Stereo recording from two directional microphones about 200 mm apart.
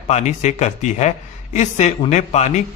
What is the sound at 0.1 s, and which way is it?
Speech, 35° left (ahead or behind).